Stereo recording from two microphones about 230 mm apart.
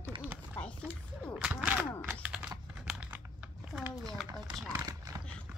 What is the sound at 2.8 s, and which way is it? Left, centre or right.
Typing, centre.